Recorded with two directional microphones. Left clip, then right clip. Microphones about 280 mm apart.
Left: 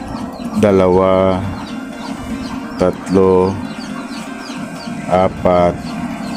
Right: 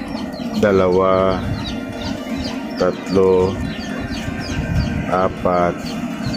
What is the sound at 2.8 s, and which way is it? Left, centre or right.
Speech, left.